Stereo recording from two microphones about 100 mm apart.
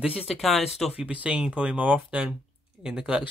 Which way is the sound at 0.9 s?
10° right (ahead or behind).